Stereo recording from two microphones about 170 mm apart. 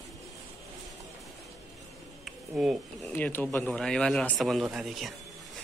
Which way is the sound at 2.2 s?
Centre (ahead or behind).